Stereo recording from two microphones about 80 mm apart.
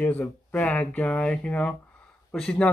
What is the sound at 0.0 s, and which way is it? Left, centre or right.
Speech, left.